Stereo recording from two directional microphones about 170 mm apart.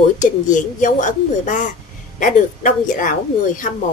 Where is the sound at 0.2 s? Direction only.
50° left (ahead or behind).